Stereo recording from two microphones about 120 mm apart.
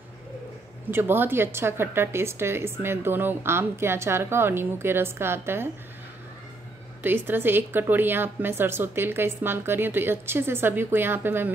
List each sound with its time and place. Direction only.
0.9 s a woman's voice: 20° right (ahead or behind)
7.2 s a woman's voice: 15° right (ahead or behind)